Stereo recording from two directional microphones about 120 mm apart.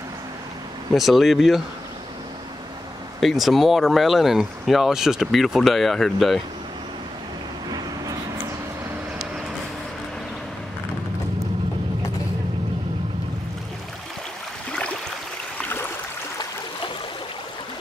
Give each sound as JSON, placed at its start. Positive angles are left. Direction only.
{"t": 0.9, "sound": "speech", "side_deg": 0}
{"t": 3.2, "sound": "speech", "side_deg": 0}
{"t": 7.7, "sound": "vehicle", "side_deg": -30}
{"t": 15.5, "sound": "a sound", "side_deg": 15}